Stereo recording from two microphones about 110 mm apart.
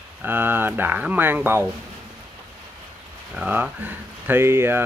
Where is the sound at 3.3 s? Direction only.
10° right (ahead or behind).